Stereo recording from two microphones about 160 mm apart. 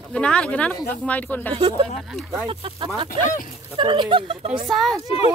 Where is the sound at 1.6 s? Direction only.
30° right (ahead or behind).